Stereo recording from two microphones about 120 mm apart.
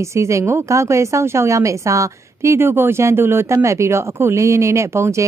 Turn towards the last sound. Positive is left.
turn(degrees=-25)  # may be behind; listen again after turning